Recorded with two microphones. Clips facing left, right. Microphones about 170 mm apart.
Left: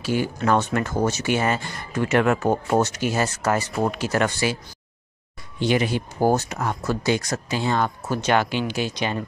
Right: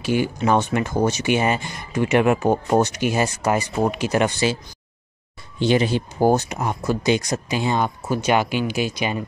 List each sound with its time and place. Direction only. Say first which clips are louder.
0.0 s speech: right 2 dB; 15° right (ahead or behind)
5.6 s speech: right 3 dB; 25° right (ahead or behind); by 9.2 s 10° right (ahead or behind)